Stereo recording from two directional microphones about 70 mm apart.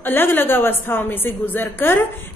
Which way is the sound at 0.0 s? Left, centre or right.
Left.